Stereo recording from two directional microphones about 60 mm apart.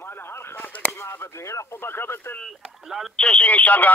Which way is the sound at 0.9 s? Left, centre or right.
Left.